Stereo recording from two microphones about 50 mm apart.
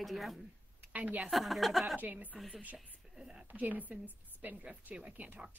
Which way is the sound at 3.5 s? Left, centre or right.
Right.